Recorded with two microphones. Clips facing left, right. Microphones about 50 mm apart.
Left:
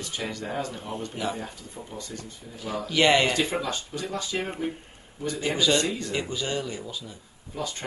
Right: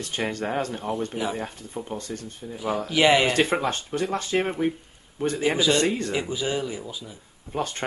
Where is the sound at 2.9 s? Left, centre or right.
Centre.